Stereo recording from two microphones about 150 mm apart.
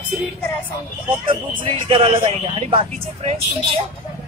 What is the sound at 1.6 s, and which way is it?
Speech, 35° right (ahead or behind).